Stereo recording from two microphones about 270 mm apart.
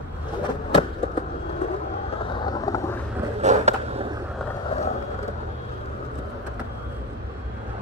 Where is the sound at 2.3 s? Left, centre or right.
Centre.